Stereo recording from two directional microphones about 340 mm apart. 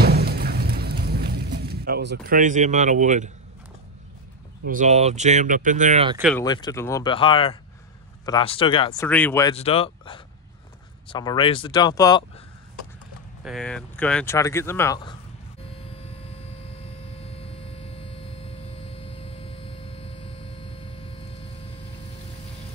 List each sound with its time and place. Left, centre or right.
0.0 s a sound: right
4.6 s speech: right
6.1 s speech: centre
6.4 s speech: centre
13.4 s speech: centre
17.2 s a sound: centre